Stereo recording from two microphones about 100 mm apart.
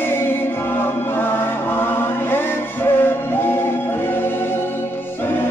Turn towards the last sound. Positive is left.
turn(degrees=20)  # may be behind; listen again after turning